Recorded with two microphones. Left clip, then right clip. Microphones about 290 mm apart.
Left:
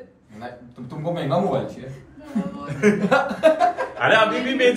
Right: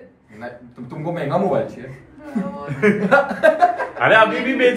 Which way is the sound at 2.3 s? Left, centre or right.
Centre.